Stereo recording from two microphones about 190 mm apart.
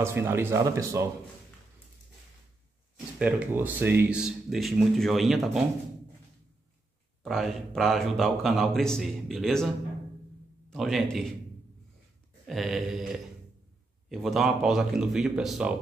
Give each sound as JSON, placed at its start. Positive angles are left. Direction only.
{"t": 0.0, "sound": "speech", "side_deg": -15}
{"t": 3.2, "sound": "speech", "side_deg": -5}
{"t": 7.2, "sound": "speech", "side_deg": 0}
{"t": 10.7, "sound": "speech", "side_deg": 0}
{"t": 12.4, "sound": "speech", "side_deg": 0}